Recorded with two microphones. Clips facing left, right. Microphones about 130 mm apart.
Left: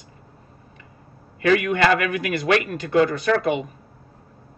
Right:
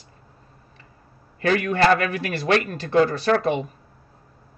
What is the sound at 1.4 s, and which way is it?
A man's voice, 35° right (ahead or behind).